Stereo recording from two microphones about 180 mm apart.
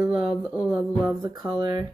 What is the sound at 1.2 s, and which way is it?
Speech, 20° right (ahead or behind).